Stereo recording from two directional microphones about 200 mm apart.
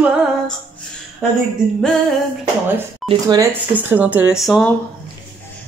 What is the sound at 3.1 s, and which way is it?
Speech, 20° right (ahead or behind).